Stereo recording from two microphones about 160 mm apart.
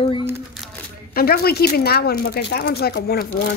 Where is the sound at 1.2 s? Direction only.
75° left (ahead or behind).